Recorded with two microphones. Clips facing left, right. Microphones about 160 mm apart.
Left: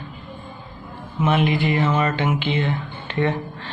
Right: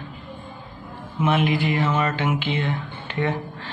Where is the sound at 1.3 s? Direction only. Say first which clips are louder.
Left 1 dB; 5° right (ahead or behind).